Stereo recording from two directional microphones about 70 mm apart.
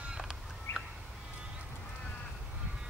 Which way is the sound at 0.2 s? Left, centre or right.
Centre.